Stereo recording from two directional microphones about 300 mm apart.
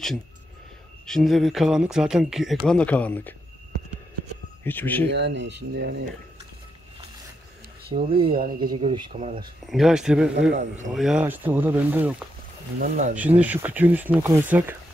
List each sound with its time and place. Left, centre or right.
1.0 s speech: centre
4.6 s speech: centre
5.1 s speech: right
7.9 s speech: centre
9.7 s speech: centre
10.5 s speech: right
10.9 s speech: centre
12.7 s speech: right
13.4 s speech: centre